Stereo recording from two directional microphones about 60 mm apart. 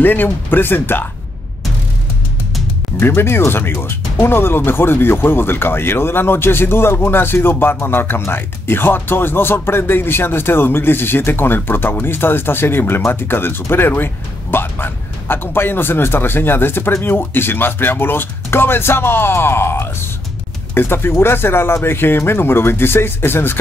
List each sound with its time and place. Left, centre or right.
0.0 s speech: left
3.0 s speech: left